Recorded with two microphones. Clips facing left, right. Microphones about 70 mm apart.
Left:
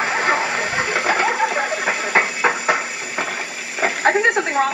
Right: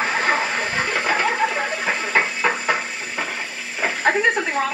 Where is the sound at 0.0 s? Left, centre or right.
Centre.